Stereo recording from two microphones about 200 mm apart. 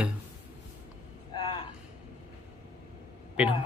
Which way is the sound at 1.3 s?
25° left (ahead or behind).